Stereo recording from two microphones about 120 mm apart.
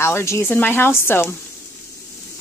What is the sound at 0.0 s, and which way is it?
Speech, 25° left (ahead or behind).